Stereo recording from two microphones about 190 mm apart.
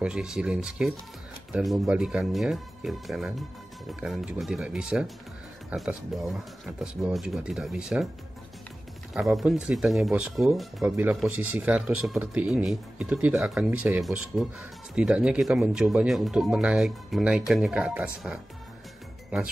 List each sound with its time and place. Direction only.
0.0 s speech: 5° right (ahead or behind)
9.1 s speech: centre (ahead or behind)